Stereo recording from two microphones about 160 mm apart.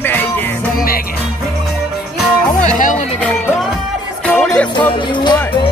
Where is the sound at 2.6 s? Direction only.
50° left (ahead or behind).